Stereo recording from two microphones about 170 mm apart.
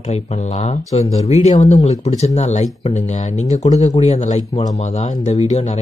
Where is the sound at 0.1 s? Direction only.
40° left (ahead or behind).